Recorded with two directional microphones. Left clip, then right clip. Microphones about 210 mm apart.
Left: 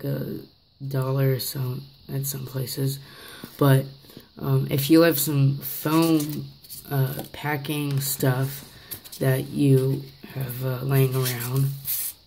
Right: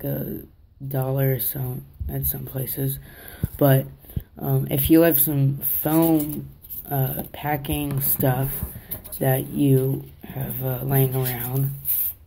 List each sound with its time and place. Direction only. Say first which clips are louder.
0.0 s speech: right 1 dB; 20° left (ahead or behind)